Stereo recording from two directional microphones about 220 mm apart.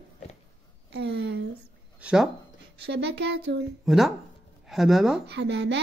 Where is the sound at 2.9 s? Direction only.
50° right (ahead or behind).